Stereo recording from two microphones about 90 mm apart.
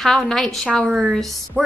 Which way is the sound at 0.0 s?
5° left (ahead or behind).